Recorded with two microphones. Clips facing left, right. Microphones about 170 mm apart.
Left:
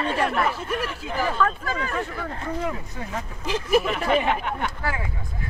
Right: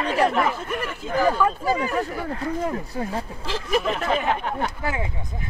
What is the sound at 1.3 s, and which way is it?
Speech, 10° right (ahead or behind).